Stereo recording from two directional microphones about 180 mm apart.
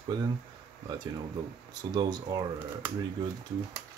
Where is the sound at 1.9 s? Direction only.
25° right (ahead or behind).